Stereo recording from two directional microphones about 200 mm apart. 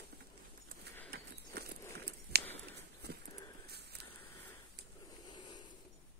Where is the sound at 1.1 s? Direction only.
55° right (ahead or behind).